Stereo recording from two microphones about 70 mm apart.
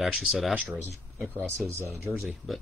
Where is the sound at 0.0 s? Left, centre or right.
Centre.